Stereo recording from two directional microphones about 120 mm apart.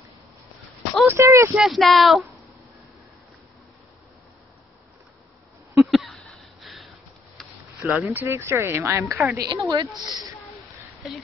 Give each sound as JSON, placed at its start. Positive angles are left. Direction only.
{"t": 1.0, "sound": "speech", "side_deg": -20}
{"t": 1.5, "sound": "speech", "side_deg": 0}
{"t": 5.9, "sound": "a sound", "side_deg": 0}
{"t": 7.9, "sound": "a woman's voice", "side_deg": -15}
{"t": 9.4, "sound": "a woman's voice", "side_deg": -35}
{"t": 11.0, "sound": "speech", "side_deg": 0}